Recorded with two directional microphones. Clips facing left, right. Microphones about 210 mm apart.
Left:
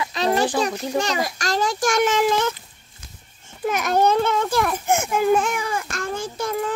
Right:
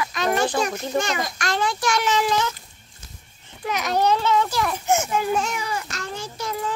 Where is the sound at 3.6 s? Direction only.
50° left (ahead or behind).